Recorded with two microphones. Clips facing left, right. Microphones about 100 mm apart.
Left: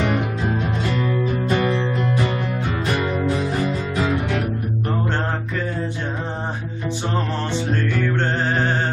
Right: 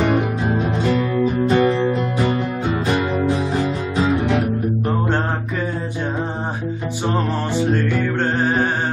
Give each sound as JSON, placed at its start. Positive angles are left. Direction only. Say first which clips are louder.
{"t": 1.5, "sound": "music", "louder": "right 4 dB", "side_deg": -25}
{"t": 7.5, "sound": "music", "louder": "right 4 dB", "side_deg": -10}